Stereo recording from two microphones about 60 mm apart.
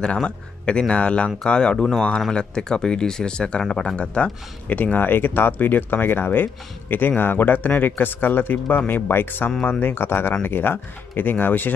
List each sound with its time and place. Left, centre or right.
0.0 s speech: centre; by 11.7 s left